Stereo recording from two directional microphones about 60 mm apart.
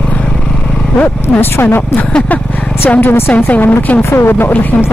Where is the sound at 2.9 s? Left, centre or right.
Left.